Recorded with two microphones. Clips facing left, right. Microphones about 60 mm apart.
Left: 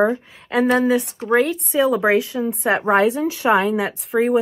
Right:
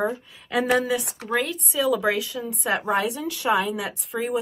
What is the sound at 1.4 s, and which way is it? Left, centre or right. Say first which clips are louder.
Speech: left 6 dB; left.